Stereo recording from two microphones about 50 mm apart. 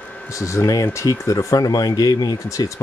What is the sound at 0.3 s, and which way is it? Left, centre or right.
Speech, left.